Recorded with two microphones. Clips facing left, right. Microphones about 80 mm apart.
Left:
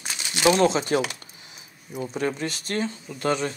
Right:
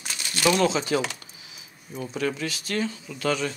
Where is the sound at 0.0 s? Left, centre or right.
Centre.